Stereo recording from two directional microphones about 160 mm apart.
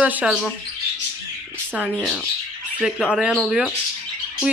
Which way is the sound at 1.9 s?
5° left (ahead or behind).